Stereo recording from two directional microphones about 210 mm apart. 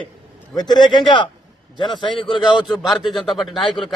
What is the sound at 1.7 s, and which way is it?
Speech, 20° left (ahead or behind).